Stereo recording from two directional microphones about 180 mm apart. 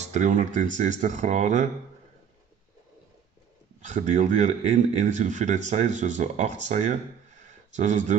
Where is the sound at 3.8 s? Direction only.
40° right (ahead or behind).